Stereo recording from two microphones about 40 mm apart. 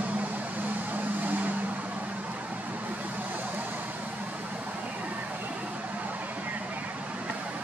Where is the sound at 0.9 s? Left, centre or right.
Right.